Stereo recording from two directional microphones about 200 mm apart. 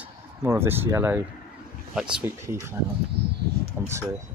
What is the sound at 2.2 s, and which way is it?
Speech, 15° right (ahead or behind).